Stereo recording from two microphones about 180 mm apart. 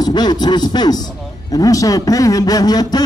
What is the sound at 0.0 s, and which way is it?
Speech, 25° left (ahead or behind).